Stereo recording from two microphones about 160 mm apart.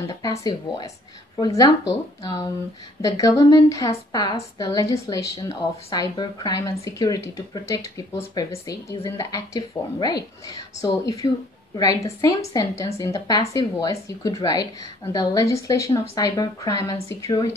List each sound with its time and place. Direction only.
0.0 s a woman's voice: 20° left (ahead or behind)
3.0 s a woman's voice: 20° left (ahead or behind)